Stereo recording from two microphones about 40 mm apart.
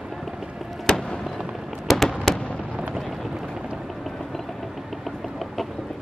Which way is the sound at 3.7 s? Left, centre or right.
Centre.